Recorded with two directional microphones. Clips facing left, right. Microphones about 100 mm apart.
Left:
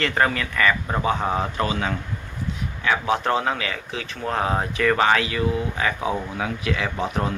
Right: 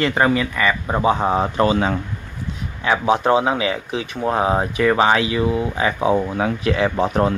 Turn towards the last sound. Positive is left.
turn(degrees=-35)  # may be behind; listen again after turning